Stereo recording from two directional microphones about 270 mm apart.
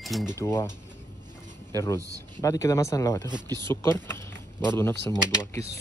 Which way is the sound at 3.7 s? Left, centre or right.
Centre.